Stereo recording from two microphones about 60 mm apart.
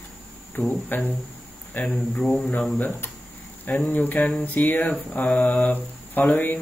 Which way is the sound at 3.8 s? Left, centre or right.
Left.